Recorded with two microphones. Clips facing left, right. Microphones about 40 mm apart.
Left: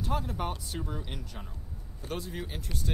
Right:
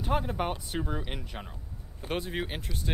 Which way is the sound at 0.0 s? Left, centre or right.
Right.